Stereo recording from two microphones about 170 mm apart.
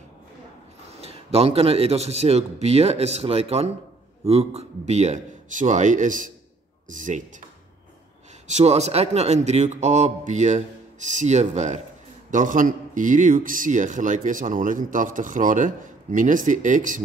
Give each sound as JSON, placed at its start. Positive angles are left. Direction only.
{"t": 0.9, "sound": "a man's voice", "side_deg": -35}
{"t": 8.5, "sound": "a man's voice", "side_deg": -40}